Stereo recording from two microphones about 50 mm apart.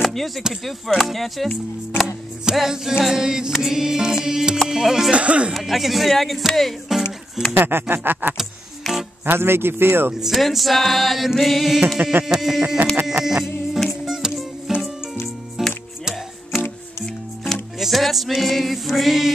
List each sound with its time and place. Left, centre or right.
0.0 s a sound: centre
0.7 s music: centre
2.5 s music: centre
5.1 s speech: right
5.5 s music: centre
7.5 s a man's voice: right
8.8 s music: centre
9.2 s a man's voice: right
10.2 s music: centre
12.0 s music: right
12.3 s music: centre
17.7 s music: centre